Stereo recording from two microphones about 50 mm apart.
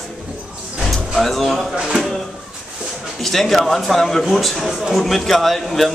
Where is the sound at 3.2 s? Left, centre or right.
Centre.